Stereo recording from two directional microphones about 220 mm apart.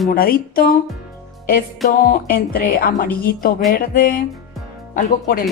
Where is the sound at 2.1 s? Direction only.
40° left (ahead or behind).